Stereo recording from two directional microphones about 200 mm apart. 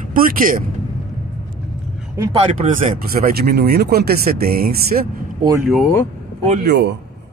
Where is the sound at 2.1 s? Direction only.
30° right (ahead or behind).